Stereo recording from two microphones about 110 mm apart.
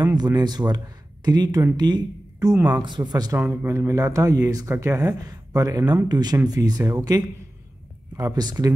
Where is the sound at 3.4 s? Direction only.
20° right (ahead or behind).